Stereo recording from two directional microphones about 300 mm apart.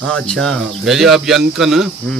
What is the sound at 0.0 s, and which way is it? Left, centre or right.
Speech, centre.